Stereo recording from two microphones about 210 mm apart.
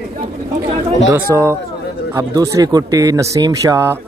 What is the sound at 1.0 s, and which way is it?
Speech, 15° right (ahead or behind).